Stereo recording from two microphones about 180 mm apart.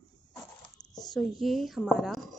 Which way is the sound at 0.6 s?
20° left (ahead or behind).